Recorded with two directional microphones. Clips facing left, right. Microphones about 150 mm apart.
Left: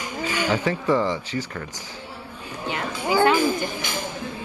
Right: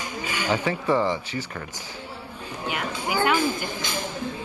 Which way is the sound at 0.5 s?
15° right (ahead or behind).